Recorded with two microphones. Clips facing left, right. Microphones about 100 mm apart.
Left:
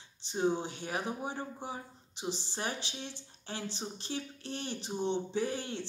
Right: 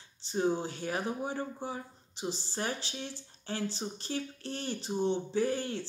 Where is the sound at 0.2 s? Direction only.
20° left (ahead or behind).